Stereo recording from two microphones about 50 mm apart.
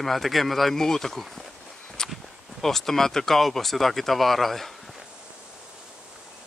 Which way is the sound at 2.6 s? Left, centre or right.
Centre.